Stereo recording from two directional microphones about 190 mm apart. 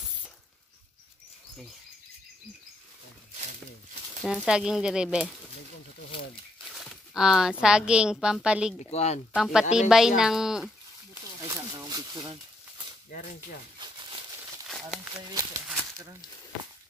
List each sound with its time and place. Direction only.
4.2 s speech: 5° right (ahead or behind)
6.7 s speech: centre (ahead or behind)
8.9 s speech: 35° left (ahead or behind)
9.3 s speech: 5° right (ahead or behind)
11.4 s a sound: 15° right (ahead or behind)
13.1 s speech: 45° left (ahead or behind)
13.7 s crumpling: 25° right (ahead or behind)
14.7 s speech: centre (ahead or behind)
15.2 s speech: 20° right (ahead or behind)